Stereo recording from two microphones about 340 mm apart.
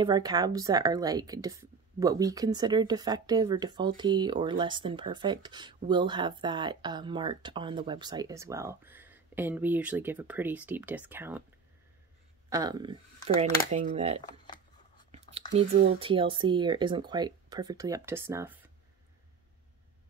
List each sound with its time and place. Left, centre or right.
0.0 s speech: centre
12.4 s speech: centre
15.0 s whispering: centre
15.5 s speech: centre